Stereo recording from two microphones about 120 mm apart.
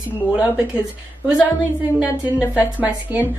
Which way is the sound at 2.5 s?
10° right (ahead or behind).